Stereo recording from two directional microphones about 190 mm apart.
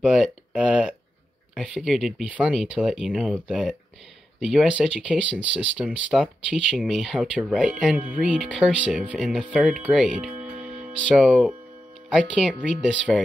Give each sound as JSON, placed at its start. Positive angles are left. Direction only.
{"t": 0.0, "sound": "speech", "side_deg": -5}